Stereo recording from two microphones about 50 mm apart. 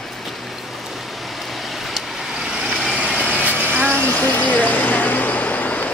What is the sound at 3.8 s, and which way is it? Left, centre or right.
Vehicle, left.